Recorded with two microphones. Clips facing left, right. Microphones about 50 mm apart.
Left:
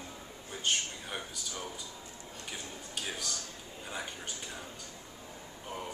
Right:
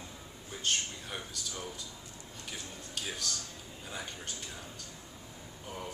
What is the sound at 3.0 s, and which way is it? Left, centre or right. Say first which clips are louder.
Speech: right 1 dB; centre.